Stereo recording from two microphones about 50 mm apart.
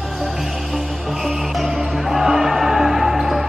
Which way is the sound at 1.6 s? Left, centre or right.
Centre.